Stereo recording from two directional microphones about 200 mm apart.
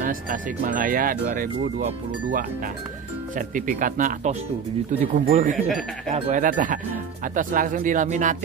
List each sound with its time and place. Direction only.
0.0 s speech: 40° right (ahead or behind)
3.3 s speech: 40° right (ahead or behind)